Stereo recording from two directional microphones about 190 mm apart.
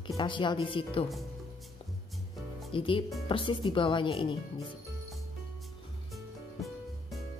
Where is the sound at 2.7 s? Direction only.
25° left (ahead or behind).